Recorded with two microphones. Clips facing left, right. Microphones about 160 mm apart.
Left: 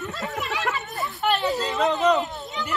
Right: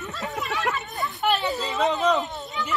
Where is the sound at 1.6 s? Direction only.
Centre (ahead or behind).